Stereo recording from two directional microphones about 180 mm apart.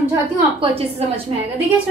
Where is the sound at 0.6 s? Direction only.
30° right (ahead or behind).